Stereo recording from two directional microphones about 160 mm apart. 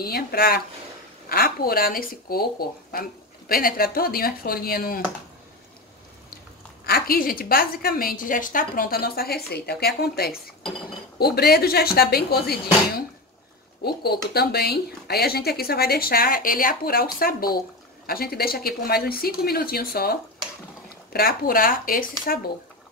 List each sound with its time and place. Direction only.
0.0 s speech: 70° left (ahead or behind)
6.9 s speech: 65° left (ahead or behind)